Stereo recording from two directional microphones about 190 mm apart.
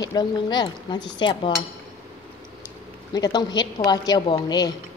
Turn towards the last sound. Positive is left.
turn(degrees=20)  # may be behind; listen again after turning